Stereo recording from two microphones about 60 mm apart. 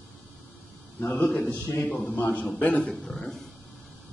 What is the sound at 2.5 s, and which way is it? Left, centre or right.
Speech, centre.